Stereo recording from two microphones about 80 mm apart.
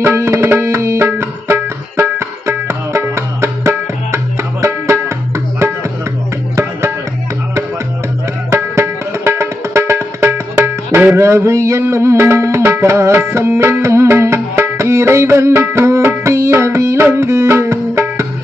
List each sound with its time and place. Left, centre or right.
0.0 s music: right
6.5 s music: right
8.7 s music: right